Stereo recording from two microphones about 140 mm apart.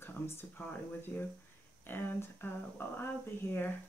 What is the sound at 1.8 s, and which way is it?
Speech, 15° left (ahead or behind).